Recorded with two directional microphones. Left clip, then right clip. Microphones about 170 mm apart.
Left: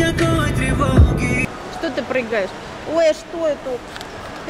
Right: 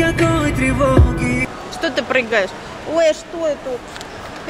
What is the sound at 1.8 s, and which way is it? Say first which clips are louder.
Speech: right 4 dB; 5° right (ahead or behind).